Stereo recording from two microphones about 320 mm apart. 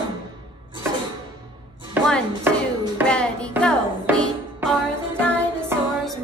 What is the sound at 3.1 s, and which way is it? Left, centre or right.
Music, centre.